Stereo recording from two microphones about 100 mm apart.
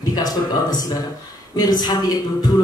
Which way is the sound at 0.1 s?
40° left (ahead or behind).